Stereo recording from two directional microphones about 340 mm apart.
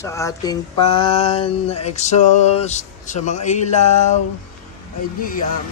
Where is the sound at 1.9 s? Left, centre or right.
Centre.